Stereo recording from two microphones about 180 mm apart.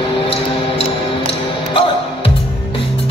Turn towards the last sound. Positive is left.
turn(degrees=30)  # may be behind; listen again after turning